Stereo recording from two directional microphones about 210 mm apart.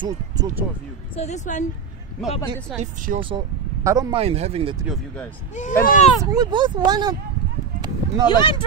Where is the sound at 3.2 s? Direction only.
25° right (ahead or behind).